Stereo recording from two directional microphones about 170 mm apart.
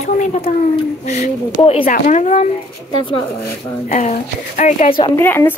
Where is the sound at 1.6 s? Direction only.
35° left (ahead or behind).